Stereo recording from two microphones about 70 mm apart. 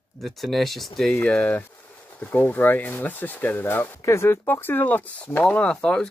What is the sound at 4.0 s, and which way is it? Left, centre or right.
Speech, left.